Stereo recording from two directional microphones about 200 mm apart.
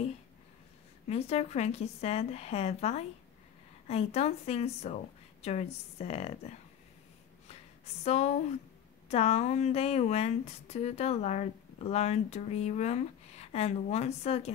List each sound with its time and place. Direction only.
1.0 s speech: 30° left (ahead or behind)
7.4 s a sound: 35° left (ahead or behind)
9.1 s speech: 30° left (ahead or behind)